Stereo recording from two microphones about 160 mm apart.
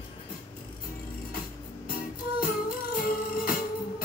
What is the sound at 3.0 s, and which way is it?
Music, 65° left (ahead or behind).